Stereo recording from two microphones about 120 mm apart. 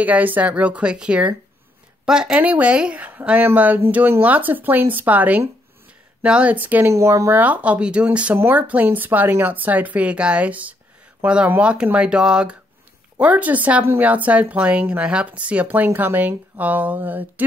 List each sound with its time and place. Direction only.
0.0 s speech: 15° right (ahead or behind)